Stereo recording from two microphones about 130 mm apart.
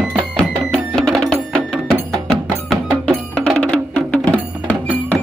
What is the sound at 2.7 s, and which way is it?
Music, centre (ahead or behind).